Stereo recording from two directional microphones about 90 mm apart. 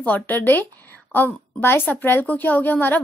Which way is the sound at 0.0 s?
20° left (ahead or behind).